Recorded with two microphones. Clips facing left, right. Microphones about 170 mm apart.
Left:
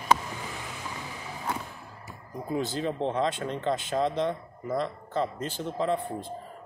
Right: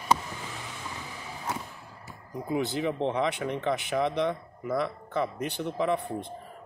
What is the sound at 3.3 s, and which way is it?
Speech, 15° right (ahead or behind).